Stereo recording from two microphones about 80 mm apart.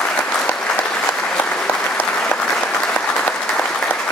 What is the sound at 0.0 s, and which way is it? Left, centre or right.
Applause, centre.